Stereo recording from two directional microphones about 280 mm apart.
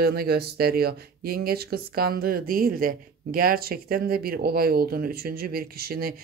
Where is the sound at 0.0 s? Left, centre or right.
Right.